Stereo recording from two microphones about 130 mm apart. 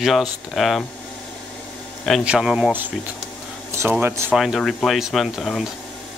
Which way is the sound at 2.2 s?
5° right (ahead or behind).